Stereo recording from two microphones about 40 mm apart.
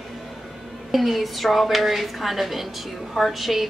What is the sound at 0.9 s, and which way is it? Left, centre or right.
A woman's voice, centre.